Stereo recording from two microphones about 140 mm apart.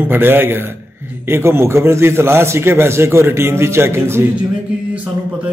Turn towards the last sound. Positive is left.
turn(degrees=-20)  # may be behind; listen again after turning